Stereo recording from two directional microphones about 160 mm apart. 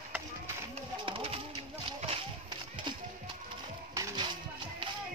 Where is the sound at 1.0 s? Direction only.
35° right (ahead or behind).